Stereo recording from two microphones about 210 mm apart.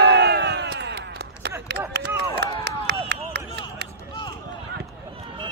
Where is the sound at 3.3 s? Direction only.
55° right (ahead or behind).